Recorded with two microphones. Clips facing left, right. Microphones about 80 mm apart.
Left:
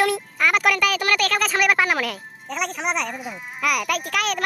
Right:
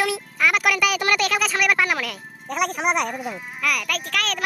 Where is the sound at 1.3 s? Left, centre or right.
Centre.